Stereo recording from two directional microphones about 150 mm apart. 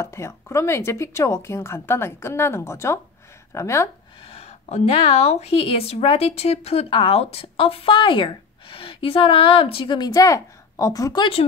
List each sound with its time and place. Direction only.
0.0 s a woman's voice: 20° left (ahead or behind)
4.2 s a woman's voice: 40° left (ahead or behind); by 11.2 s 25° left (ahead or behind)